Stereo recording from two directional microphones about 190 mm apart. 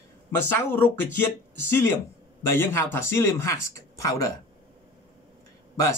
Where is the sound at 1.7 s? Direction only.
15° left (ahead or behind).